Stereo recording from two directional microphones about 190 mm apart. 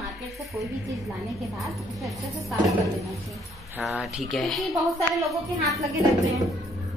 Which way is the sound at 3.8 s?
Centre (ahead or behind).